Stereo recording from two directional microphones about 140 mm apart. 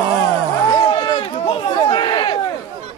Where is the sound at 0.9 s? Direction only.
30° left (ahead or behind).